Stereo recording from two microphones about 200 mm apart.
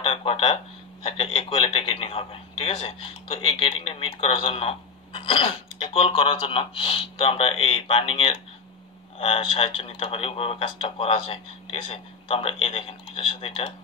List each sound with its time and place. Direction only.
0.0 s speech: 25° left (ahead or behind)